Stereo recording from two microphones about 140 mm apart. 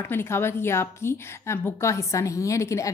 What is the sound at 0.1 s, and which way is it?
A woman's voice, 15° left (ahead or behind).